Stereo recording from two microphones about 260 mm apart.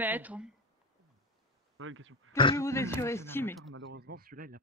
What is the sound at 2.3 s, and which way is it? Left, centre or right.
Speech, centre.